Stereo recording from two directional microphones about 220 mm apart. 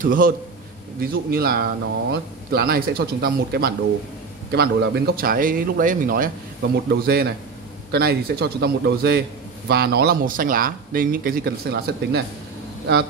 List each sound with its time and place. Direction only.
0.0 s a man's voice: 40° right (ahead or behind)